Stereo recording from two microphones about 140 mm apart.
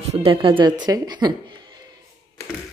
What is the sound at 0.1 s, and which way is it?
Speech, 40° right (ahead or behind).